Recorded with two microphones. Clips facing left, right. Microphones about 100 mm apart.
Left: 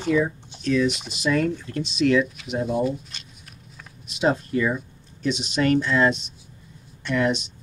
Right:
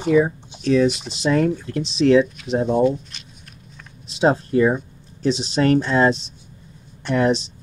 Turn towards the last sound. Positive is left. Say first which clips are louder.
# right 4 dB
turn(degrees=-30)  # may be behind; listen again after turning